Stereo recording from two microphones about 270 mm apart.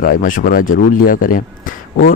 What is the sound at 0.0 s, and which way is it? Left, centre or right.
Speech, left.